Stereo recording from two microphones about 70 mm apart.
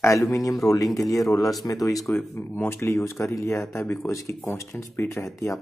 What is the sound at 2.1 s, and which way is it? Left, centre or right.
Speech, left.